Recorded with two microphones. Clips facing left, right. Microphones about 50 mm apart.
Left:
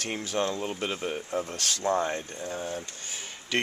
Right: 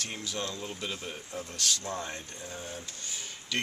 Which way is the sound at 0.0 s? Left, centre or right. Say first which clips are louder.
Left 7 dB; left.